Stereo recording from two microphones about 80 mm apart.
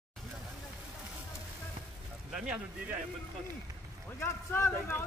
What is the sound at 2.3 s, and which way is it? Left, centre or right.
Speech, centre.